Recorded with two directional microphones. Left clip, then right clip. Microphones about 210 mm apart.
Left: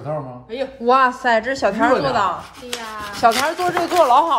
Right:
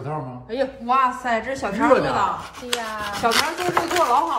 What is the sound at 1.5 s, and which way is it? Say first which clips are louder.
Speech: left 2 dB; 45° left (ahead or behind).